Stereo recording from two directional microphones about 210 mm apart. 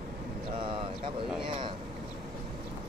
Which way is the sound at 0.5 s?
25° right (ahead or behind).